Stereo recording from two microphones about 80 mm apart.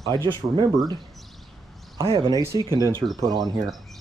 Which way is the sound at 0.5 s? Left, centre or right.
Right.